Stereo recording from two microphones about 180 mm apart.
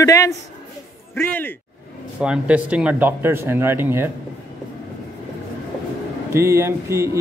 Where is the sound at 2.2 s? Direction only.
5° right (ahead or behind).